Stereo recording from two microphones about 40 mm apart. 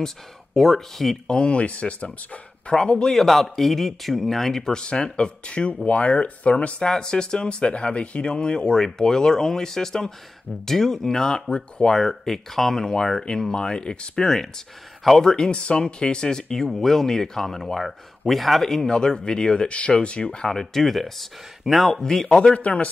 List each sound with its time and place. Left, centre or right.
0.6 s speech: centre
1.2 s speech: left
2.7 s speech: left
3.1 s speech: centre
4.7 s speech: left
6.9 s speech: centre
12.8 s speech: centre
14.2 s speech: centre
15.5 s speech: left
20.5 s speech: centre
22.3 s speech: left
22.6 s speech: left